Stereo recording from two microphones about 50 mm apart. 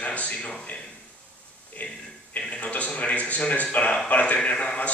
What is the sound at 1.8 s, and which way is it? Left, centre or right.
Speech, left.